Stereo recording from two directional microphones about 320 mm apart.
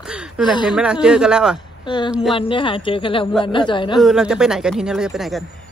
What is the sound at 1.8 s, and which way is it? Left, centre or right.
Speech, centre.